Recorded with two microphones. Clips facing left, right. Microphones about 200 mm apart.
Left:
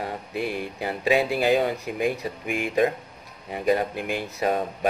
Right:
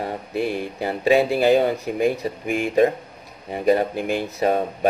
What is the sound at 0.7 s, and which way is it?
Speech, 35° right (ahead or behind).